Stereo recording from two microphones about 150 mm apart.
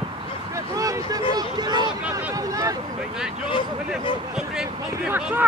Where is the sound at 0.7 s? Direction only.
20° right (ahead or behind).